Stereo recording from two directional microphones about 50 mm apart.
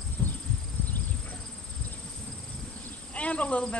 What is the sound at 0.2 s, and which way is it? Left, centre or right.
Cricket, left.